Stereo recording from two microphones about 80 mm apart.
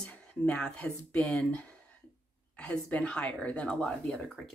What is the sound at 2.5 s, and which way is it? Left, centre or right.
Speech, centre.